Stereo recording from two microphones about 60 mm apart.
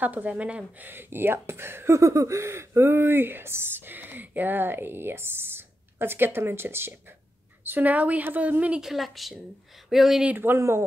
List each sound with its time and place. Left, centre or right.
0.0 s speech: right
0.7 s speech: right
2.0 s speech: right
8.8 s a woman's voice: centre
10.2 s speech: right
10.6 s speech: right